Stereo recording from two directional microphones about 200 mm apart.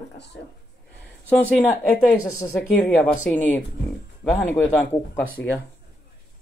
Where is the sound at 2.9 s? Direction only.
5° left (ahead or behind).